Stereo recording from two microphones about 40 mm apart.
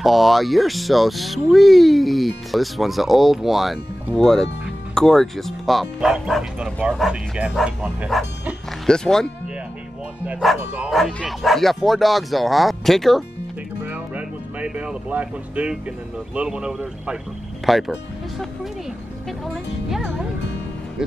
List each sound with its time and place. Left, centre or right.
0.0 s speech: centre
4.2 s speech: centre
6.6 s speech: right
8.1 s speech: centre
8.8 s speech: centre
10.4 s speech: centre
13.8 s music: right
15.0 s speech: right
16.5 s speech: right
17.6 s speech: centre